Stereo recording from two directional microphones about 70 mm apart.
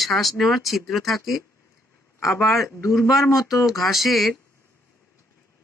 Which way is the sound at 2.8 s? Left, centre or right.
Left.